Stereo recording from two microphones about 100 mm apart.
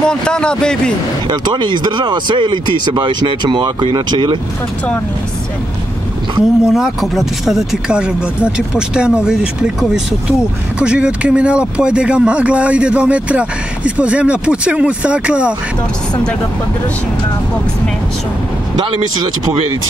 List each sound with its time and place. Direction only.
0.0 s speech: 10° left (ahead or behind)
1.2 s speech: 50° right (ahead or behind)
6.6 s speech: 5° right (ahead or behind)